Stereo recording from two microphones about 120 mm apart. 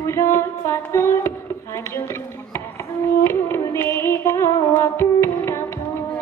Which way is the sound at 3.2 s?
25° left (ahead or behind).